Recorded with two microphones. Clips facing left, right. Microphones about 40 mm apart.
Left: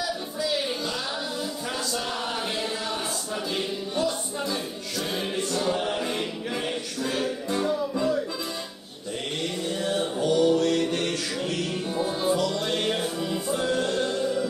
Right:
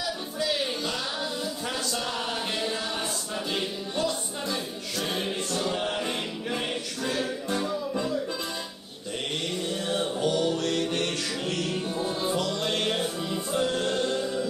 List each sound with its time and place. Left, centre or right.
3.9 s music: right
5.8 s a capella: centre
6.0 s music: right
9.8 s music: right
10.3 s music: left
10.9 s music: right
11.9 s music: centre
12.4 s music: right
13.6 s music: left